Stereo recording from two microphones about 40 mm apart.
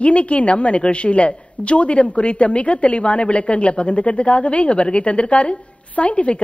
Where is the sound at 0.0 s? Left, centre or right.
Left.